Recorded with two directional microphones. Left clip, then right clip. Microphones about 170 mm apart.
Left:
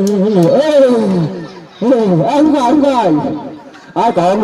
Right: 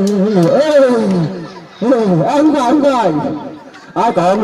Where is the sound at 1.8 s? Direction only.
35° left (ahead or behind).